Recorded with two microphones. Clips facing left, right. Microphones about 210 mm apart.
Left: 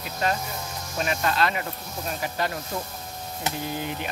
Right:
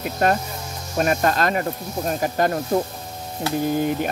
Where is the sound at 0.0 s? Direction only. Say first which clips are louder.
Right 7 dB; 55° right (ahead or behind).